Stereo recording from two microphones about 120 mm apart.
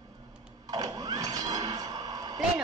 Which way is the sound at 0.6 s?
35° right (ahead or behind).